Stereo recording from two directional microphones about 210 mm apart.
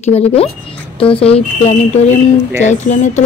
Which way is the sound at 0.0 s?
30° left (ahead or behind).